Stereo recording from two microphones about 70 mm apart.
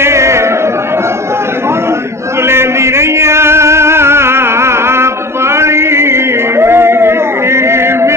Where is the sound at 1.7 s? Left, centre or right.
Right.